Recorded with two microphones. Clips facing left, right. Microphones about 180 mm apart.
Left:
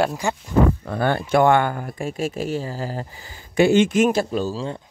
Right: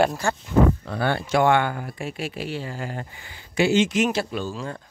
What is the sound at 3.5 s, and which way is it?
Speech, 55° left (ahead or behind).